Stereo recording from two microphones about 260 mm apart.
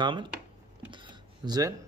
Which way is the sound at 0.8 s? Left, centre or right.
Centre.